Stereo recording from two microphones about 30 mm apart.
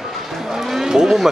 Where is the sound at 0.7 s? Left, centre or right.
Centre.